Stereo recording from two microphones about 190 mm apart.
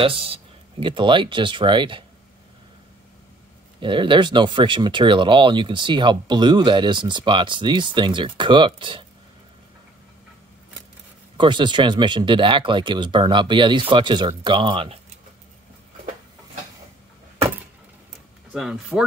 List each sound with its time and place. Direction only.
0.0 s speech: 30° right (ahead or behind)
3.8 s speech: 25° right (ahead or behind)
11.3 s speech: 25° right (ahead or behind)
18.5 s speech: 5° right (ahead or behind)